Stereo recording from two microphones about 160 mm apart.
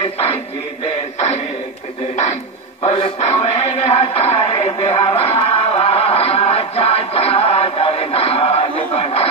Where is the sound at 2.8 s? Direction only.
40° left (ahead or behind).